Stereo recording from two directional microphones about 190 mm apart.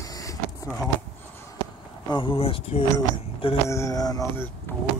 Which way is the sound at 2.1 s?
25° left (ahead or behind).